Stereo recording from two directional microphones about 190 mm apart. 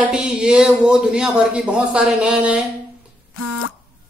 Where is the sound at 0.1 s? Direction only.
5° right (ahead or behind).